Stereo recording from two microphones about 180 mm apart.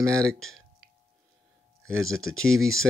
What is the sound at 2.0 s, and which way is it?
Speech, 5° left (ahead or behind).